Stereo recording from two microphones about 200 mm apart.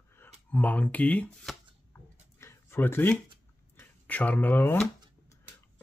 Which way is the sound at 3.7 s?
10° left (ahead or behind).